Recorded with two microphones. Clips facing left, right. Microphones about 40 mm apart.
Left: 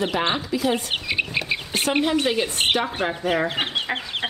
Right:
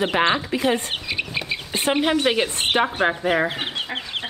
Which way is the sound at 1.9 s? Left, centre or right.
Right.